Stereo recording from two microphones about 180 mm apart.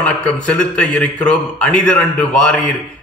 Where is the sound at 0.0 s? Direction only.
5° left (ahead or behind).